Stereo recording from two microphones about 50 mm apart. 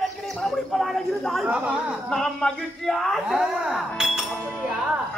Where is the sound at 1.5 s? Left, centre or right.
Right.